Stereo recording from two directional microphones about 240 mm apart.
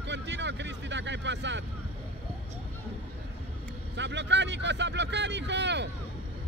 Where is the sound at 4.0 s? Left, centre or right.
Right.